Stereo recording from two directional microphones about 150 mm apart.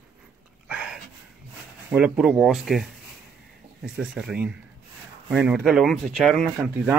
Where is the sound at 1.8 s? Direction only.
10° right (ahead or behind).